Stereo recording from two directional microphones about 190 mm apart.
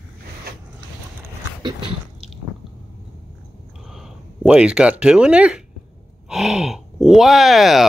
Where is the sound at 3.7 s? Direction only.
Centre (ahead or behind).